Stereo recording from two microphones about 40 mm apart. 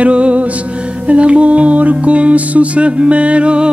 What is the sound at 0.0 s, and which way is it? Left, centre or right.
Music, right.